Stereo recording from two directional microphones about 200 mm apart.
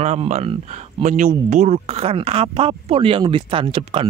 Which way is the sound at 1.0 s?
40° right (ahead or behind).